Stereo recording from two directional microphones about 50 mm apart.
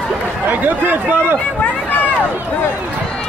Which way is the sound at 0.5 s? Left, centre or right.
Right.